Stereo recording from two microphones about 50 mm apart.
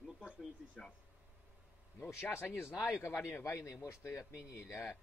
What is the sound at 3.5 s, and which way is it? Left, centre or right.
Speech, left.